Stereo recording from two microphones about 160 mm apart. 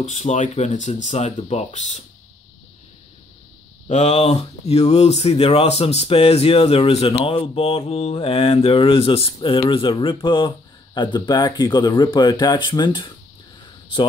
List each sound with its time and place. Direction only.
0.0 s speech: 50° left (ahead or behind)
3.8 s speech: 45° left (ahead or behind)